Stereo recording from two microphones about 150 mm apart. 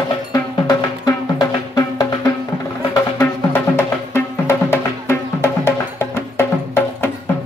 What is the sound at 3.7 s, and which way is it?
Music, 15° left (ahead or behind).